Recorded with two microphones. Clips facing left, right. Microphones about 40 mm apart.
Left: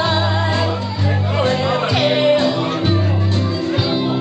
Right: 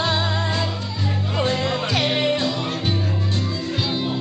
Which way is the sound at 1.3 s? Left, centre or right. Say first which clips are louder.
Left 5 dB; centre.